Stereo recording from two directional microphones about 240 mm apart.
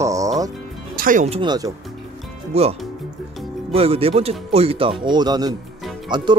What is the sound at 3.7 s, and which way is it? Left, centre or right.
Speech, right.